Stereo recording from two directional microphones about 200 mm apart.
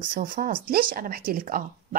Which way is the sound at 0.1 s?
45° right (ahead or behind).